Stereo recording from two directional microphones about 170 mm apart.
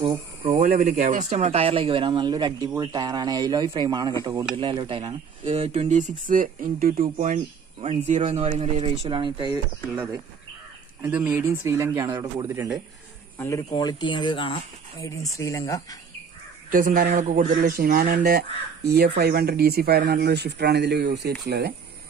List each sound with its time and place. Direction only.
0.0 s speech: 35° right (ahead or behind)
0.6 s speech: 55° right (ahead or behind); by 9.6 s 25° right (ahead or behind)
11.0 s speech: 10° right (ahead or behind)
13.4 s speech: 20° left (ahead or behind)
16.7 s speech: 55° right (ahead or behind)
17.6 s speech: 65° right (ahead or behind)